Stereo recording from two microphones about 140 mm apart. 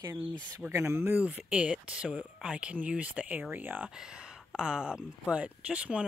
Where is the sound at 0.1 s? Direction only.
15° right (ahead or behind).